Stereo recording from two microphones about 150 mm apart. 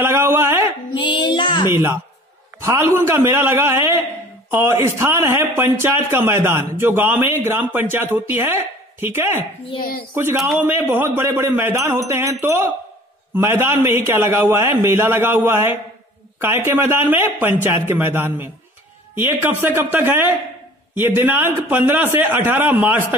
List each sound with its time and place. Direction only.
0.0 s speech: 15° right (ahead or behind)
0.9 s child singing: 30° left (ahead or behind)
1.7 s a man's voice: 15° right (ahead or behind)